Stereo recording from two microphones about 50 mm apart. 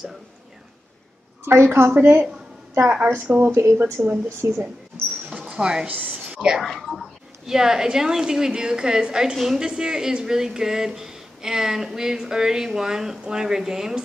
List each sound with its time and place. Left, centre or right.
1.4 s a woman's voice: right
1.9 s a woman's voice: right
3.3 s speech: right
4.0 s a woman's voice: right
4.4 s speech: right
5.4 s a sound: centre
5.9 s a sound: right
6.2 s whispering: centre
6.6 s a woman's voice: centre